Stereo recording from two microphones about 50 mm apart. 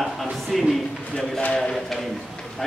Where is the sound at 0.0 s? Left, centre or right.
Centre.